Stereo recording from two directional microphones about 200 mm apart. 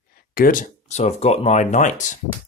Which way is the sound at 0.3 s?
45° left (ahead or behind).